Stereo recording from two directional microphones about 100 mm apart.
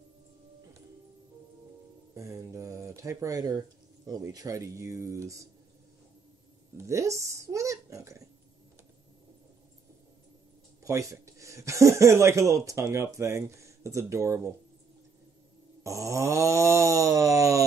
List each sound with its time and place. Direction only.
2.1 s speech: 30° right (ahead or behind)
6.8 s a sound: 30° right (ahead or behind)
10.8 s speech: 30° right (ahead or behind)
15.8 s wail: 30° right (ahead or behind)